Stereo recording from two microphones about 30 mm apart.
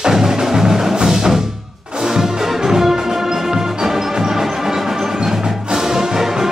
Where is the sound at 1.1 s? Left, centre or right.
Centre.